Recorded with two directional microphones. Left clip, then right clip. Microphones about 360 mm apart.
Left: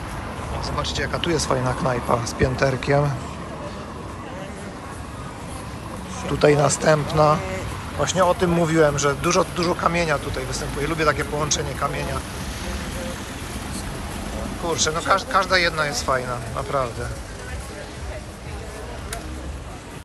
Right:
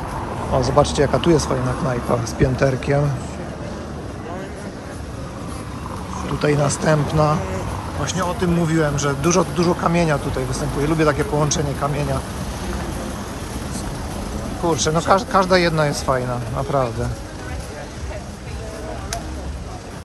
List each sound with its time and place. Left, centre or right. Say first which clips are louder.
0.6 s speech: right 10 dB; centre
6.4 s speech: left 2 dB; centre
14.7 s speech: right 3 dB; centre